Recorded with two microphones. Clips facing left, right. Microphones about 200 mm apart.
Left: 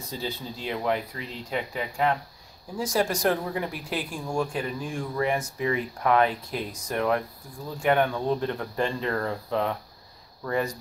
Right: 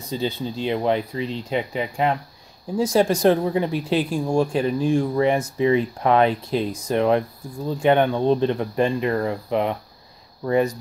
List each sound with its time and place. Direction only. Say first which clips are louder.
0.1 s speech: right 8 dB; 20° right (ahead or behind)